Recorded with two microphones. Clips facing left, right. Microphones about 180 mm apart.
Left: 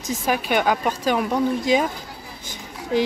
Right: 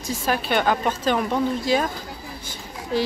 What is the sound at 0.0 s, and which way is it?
A woman's voice, 20° left (ahead or behind).